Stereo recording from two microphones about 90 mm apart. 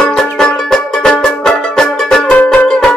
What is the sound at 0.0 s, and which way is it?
Music, 10° left (ahead or behind).